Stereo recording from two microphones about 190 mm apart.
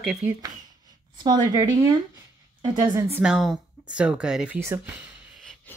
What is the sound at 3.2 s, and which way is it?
Speech, centre (ahead or behind).